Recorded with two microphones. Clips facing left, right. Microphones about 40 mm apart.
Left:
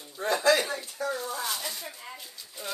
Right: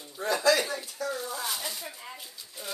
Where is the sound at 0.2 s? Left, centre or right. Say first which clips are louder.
Left 1 dB; left.